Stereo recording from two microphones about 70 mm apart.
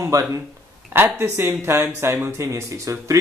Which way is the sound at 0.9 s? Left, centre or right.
Right.